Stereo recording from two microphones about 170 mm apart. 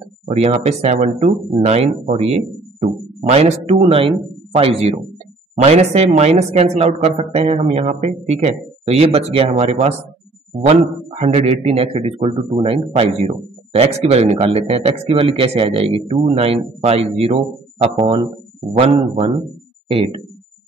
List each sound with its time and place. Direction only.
0.3 s a man's voice: 40° right (ahead or behind)